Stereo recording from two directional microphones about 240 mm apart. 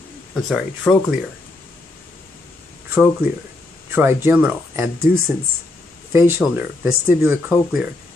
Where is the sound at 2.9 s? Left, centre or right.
Centre.